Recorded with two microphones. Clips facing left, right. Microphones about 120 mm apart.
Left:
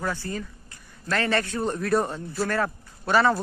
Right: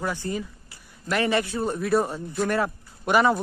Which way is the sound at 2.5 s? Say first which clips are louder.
Right 1 dB; 15° right (ahead or behind).